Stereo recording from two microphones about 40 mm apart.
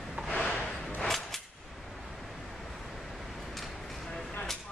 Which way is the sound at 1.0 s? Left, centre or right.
Centre.